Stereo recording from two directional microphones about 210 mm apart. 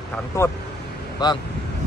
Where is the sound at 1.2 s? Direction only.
20° left (ahead or behind).